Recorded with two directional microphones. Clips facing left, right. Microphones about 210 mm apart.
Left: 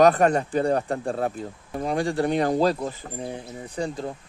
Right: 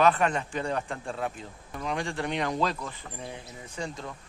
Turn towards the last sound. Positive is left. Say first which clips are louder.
# left 7 dB
turn(degrees=35)  # may be behind; listen again after turning